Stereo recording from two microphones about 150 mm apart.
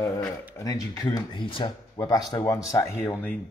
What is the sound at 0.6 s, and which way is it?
A man's voice, 20° left (ahead or behind).